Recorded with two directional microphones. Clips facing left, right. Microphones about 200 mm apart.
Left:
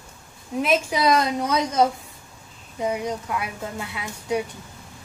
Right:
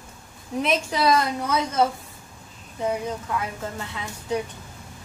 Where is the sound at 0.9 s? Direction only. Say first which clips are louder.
Left 1 dB; 15° left (ahead or behind).